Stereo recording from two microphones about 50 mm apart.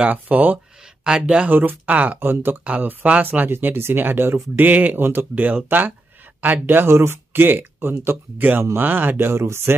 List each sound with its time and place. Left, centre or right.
0.0 s speech: right
1.0 s speech: centre
1.5 s speech: right
2.1 s speech: right
2.6 s speech: right
4.6 s speech: right
7.3 s speech: right
9.3 s speech: right